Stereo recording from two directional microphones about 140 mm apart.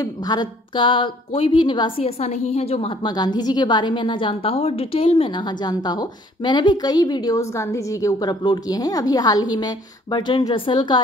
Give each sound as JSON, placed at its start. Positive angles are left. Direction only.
{"t": 0.0, "sound": "a woman's voice", "side_deg": 30}
{"t": 3.0, "sound": "a woman's voice", "side_deg": 30}